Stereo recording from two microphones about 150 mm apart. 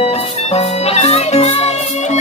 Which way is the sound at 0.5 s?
45° left (ahead or behind).